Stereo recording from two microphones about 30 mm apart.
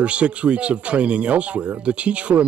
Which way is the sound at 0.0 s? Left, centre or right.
Right.